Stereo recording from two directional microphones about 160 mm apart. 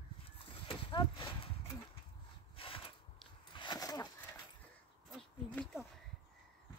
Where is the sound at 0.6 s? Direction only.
30° left (ahead or behind).